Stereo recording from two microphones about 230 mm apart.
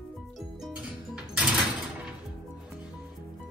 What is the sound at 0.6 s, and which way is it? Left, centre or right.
Music, centre.